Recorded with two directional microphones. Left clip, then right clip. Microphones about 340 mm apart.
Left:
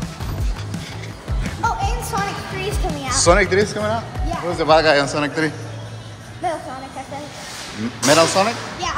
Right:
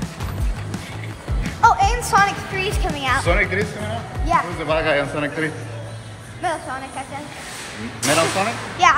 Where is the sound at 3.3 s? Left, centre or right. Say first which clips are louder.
Left 4 dB; left.